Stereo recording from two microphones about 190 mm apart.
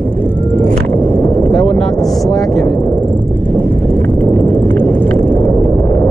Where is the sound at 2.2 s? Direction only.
20° left (ahead or behind).